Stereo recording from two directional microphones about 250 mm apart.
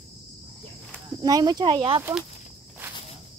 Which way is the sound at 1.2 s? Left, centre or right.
Centre.